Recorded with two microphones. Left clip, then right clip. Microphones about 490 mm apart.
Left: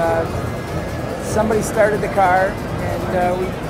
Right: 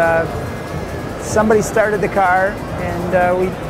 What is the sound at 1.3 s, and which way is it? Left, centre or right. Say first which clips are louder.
Speech: right 3 dB; right.